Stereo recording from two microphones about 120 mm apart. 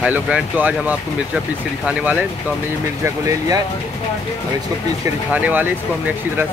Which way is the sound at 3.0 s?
25° right (ahead or behind).